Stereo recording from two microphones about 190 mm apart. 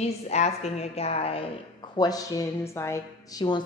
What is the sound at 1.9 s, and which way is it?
A woman's voice, 20° left (ahead or behind).